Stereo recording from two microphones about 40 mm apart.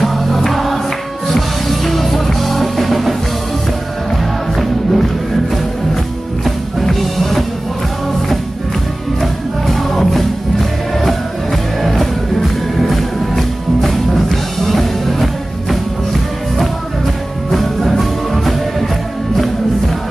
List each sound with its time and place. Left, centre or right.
0.0 s music: centre
4.6 s music: centre
6.4 s music: centre
9.2 s music: centre